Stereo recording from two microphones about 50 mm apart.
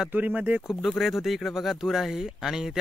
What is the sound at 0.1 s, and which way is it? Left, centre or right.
Speech, right.